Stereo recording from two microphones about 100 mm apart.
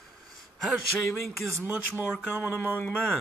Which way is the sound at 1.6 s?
20° right (ahead or behind).